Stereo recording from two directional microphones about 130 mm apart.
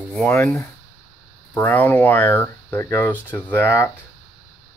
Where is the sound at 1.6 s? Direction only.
15° left (ahead or behind).